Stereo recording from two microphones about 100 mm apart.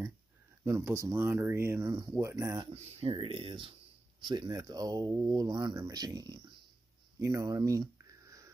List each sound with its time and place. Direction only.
0.7 s speech: 25° right (ahead or behind)
2.7 s speech: 90° right; by 6.5 s 45° right (ahead or behind)
7.2 s a sound: 30° right (ahead or behind)